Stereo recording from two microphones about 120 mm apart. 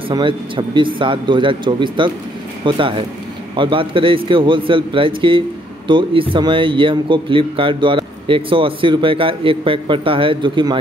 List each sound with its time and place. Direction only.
0.1 s speech: 45° right (ahead or behind)